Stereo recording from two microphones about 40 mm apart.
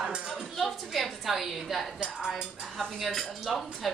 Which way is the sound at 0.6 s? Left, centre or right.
Centre.